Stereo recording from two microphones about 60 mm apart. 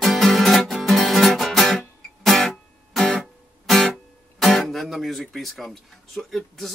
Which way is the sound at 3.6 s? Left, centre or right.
Centre.